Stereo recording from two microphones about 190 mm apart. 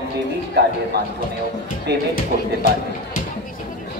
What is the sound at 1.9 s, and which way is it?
Speech, 60° right (ahead or behind).